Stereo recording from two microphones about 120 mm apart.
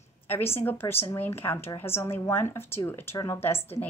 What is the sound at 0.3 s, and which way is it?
A woman's voice, 20° left (ahead or behind).